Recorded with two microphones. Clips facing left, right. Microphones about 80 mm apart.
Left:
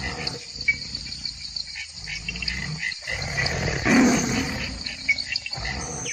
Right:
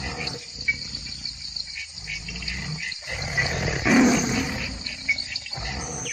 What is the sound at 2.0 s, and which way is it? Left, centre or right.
Cricket, left.